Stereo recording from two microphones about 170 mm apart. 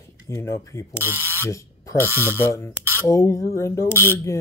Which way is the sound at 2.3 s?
15° left (ahead or behind).